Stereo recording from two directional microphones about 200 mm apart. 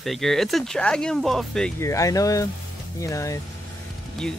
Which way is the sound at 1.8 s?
15° left (ahead or behind).